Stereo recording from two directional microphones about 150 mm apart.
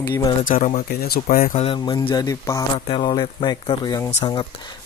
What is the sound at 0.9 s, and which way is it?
Speech, 90° left.